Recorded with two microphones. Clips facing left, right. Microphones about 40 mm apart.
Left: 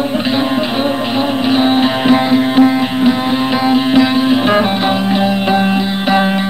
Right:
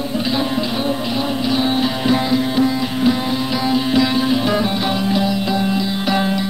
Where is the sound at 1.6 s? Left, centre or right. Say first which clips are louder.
Left 6 dB; left.